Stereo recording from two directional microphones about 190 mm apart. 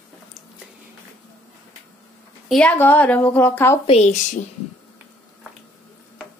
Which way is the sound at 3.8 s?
35° left (ahead or behind).